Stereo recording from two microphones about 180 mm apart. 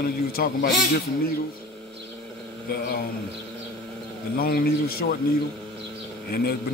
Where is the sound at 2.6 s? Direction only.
55° left (ahead or behind).